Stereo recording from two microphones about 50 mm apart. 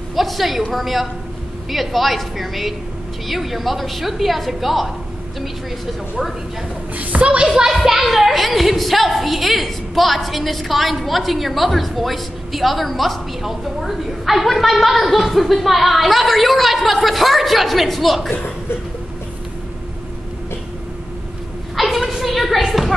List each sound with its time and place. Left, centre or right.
0.1 s a woman's voice: centre
7.0 s a woman's voice: right
7.4 s a woman's voice: centre
21.7 s a sound: centre